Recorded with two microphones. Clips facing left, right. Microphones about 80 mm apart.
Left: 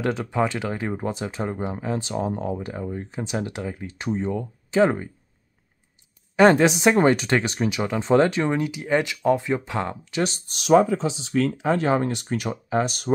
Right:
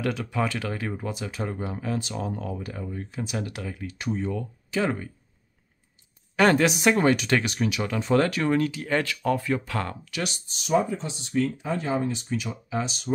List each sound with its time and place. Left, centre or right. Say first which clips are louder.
0.0 s speech: left 4 dB; left
6.3 s speech: left 4 dB; left
10.4 s speech: left 7 dB; left